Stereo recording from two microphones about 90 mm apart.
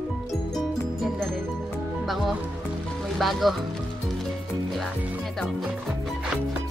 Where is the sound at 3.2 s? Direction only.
Centre (ahead or behind).